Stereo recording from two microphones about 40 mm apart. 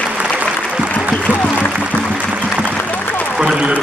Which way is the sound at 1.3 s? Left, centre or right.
Left.